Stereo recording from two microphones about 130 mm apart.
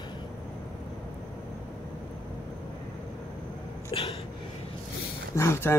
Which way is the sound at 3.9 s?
45° left (ahead or behind).